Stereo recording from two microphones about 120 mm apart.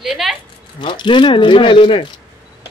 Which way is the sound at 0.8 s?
40° left (ahead or behind).